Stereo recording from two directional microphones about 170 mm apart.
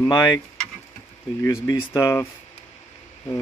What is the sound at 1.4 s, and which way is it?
Speech, 20° left (ahead or behind).